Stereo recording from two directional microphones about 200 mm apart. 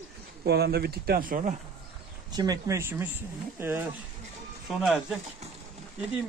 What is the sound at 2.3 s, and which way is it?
Speech, 20° right (ahead or behind).